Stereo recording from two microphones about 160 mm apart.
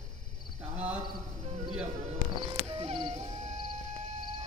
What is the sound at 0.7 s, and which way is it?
Cricket, 10° right (ahead or behind).